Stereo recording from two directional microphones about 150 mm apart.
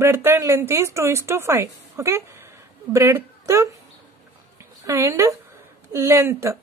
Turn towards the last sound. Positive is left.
turn(degrees=-20)  # may be behind; listen again after turning